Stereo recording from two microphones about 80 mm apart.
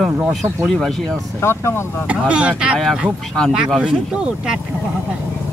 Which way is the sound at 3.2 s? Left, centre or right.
Centre.